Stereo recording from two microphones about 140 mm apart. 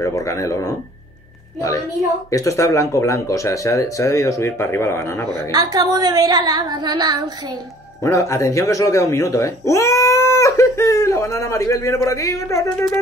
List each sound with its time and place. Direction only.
0.0 s speech: 25° left (ahead or behind)
2.3 s speech: 25° left (ahead or behind)
5.5 s female singing: 30° right (ahead or behind)
8.0 s speech: 20° left (ahead or behind)